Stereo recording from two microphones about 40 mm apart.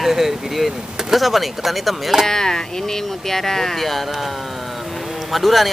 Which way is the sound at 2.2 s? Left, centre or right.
Centre.